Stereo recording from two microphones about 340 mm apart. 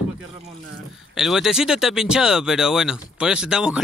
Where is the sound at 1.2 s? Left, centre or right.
Centre.